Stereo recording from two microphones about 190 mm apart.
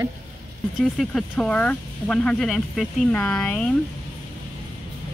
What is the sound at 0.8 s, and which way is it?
Speech, centre (ahead or behind).